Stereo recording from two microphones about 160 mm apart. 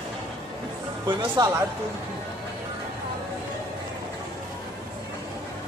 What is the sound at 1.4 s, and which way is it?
Speech, 25° right (ahead or behind).